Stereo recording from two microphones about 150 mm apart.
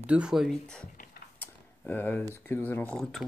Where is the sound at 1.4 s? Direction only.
10° left (ahead or behind).